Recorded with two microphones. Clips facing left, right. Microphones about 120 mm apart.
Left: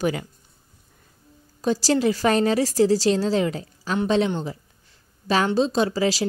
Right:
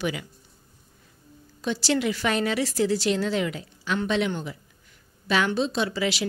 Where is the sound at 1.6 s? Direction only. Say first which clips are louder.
Left 4 dB; 40° left (ahead or behind).